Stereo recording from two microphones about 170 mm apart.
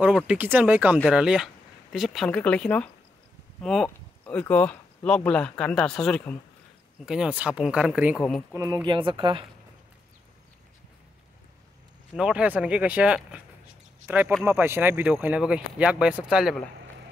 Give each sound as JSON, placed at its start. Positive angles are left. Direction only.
{"t": 0.0, "sound": "speech", "side_deg": -5}
{"t": 8.8, "sound": "speech", "side_deg": -30}
{"t": 12.2, "sound": "speech", "side_deg": -5}